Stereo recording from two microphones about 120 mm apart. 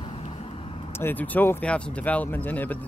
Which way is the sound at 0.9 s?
15° left (ahead or behind).